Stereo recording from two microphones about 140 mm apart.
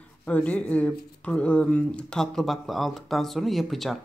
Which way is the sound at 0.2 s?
10° left (ahead or behind).